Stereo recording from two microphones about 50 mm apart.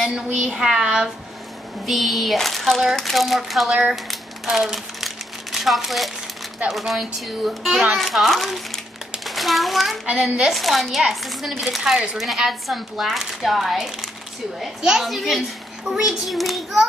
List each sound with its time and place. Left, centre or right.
0.1 s a child's voice: centre
0.5 s a child's voice: centre
1.9 s speech: centre
3.9 s a sound: centre
6.7 s a child's voice: centre
10.1 s a child's voice: centre
10.5 s a child's voice: centre
15.0 s speech: centre